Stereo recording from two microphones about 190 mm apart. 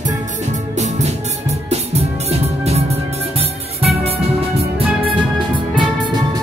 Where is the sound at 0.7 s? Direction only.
35° right (ahead or behind).